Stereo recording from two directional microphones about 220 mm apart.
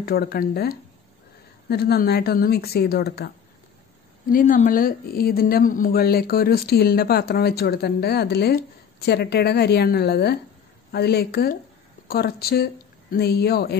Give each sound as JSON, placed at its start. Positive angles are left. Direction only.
{"t": 0.0, "sound": "speech", "side_deg": 45}
{"t": 4.3, "sound": "speech", "side_deg": 40}